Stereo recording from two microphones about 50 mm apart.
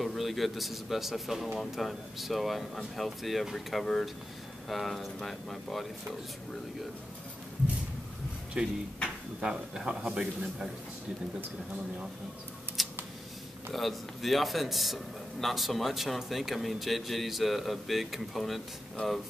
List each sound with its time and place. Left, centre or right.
0.0 s speech: centre
8.6 s a man's voice: right
12.8 s scissors: centre
13.7 s speech: centre
19.0 s speech: left